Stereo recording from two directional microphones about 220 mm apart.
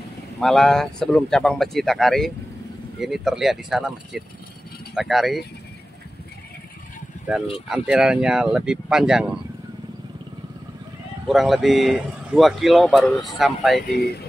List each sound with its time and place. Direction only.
0.4 s speech: centre (ahead or behind)
7.6 s speech: 5° right (ahead or behind)
11.2 s speech: centre (ahead or behind)
13.7 s speech: 45° left (ahead or behind)